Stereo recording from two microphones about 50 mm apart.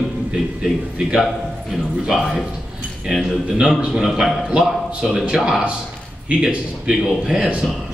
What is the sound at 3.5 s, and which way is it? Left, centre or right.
Speech, centre.